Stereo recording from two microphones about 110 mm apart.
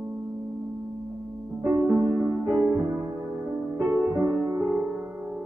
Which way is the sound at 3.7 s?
5° left (ahead or behind).